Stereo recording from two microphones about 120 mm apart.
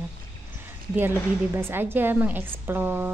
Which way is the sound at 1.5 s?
20° right (ahead or behind).